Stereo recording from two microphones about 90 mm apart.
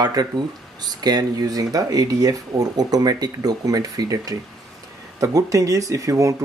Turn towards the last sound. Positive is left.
turn(degrees=-35)  # may be behind; listen again after turning